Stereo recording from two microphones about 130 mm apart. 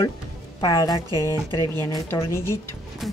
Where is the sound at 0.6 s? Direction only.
30° left (ahead or behind).